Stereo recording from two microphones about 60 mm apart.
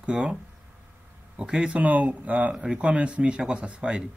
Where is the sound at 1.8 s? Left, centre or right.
Right.